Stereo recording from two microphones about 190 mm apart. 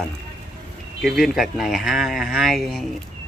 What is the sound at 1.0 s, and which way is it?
Speech, centre (ahead or behind).